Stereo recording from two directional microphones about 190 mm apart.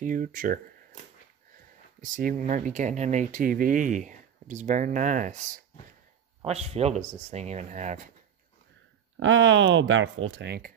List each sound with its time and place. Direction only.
0.0 s speech: 45° right (ahead or behind)
2.0 s speech: 45° right (ahead or behind)
6.4 s speech: 35° right (ahead or behind)
9.1 s speech: 90° right
10.3 s speech: 60° right (ahead or behind)